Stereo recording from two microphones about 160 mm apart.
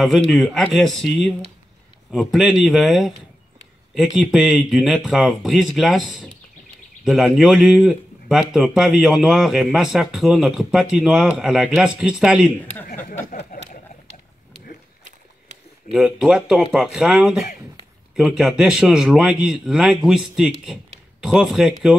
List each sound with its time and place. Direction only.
0.0 s a man's voice: centre (ahead or behind)
13.5 s a sound: 60° left (ahead or behind)
15.9 s a man's voice: 5° right (ahead or behind)